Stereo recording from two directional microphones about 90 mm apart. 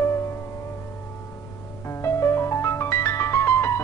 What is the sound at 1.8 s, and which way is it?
Music, 30° left (ahead or behind).